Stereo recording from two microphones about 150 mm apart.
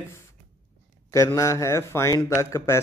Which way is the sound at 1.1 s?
20° left (ahead or behind).